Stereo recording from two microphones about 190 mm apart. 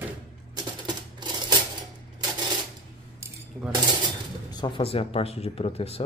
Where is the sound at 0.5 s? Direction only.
25° right (ahead or behind).